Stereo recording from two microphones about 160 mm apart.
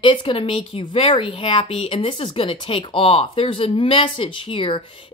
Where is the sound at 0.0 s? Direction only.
35° left (ahead or behind).